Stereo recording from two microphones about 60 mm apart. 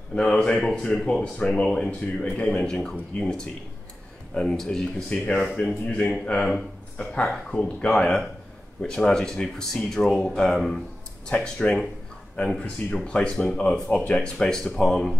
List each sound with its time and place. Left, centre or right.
0.1 s a man's voice: centre
12.5 s a man's voice: left